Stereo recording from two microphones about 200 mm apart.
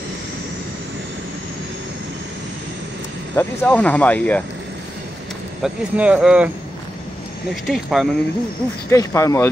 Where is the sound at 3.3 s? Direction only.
5° left (ahead or behind).